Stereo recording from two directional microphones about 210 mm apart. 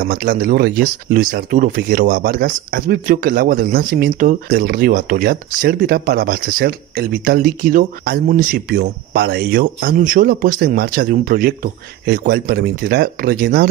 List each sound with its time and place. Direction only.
0.0 s speech: 40° right (ahead or behind)